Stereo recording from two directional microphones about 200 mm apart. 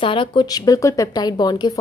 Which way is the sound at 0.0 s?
25° left (ahead or behind).